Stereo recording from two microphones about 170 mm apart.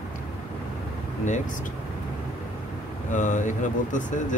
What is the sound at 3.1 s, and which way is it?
Speech, 50° left (ahead or behind).